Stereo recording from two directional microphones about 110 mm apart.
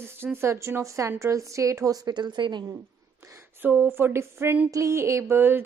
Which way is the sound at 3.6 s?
20° right (ahead or behind).